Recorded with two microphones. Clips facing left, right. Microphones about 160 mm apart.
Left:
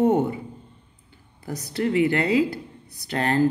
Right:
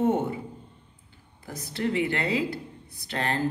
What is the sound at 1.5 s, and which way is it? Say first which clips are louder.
Speech: left 4 dB; 40° left (ahead or behind).